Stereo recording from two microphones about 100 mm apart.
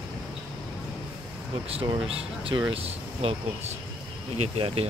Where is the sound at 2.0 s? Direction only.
80° right.